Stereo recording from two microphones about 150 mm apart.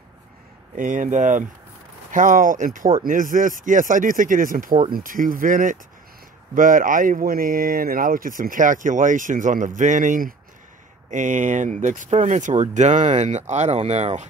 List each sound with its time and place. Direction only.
0.7 s speech: 60° right (ahead or behind)